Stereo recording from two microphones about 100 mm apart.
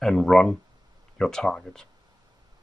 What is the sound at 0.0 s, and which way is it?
Speech, 5° left (ahead or behind).